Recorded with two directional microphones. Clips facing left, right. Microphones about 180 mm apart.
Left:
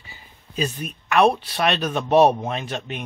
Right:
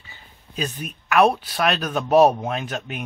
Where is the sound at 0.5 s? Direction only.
Centre (ahead or behind).